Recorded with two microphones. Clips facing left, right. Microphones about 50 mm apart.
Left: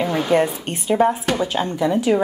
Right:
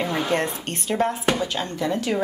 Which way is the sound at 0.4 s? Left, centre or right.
Centre.